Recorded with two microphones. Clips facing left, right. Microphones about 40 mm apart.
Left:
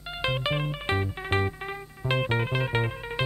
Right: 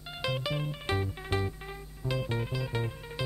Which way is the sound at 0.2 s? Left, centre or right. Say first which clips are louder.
Left 5 dB; left.